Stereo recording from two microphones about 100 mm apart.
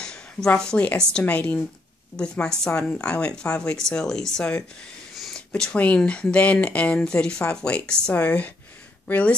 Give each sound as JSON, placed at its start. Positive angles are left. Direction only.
{"t": 0.0, "sound": "speech", "side_deg": 10}
{"t": 5.1, "sound": "a sound", "side_deg": 0}
{"t": 5.5, "sound": "speech", "side_deg": 10}